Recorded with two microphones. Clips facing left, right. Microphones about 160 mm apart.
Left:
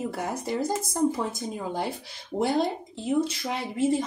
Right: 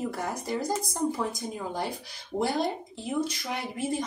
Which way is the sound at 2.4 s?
20° left (ahead or behind).